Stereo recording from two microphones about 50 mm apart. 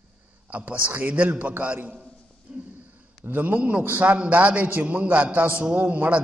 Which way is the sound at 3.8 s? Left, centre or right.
Right.